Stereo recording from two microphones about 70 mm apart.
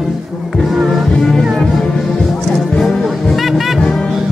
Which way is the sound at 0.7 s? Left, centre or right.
Centre.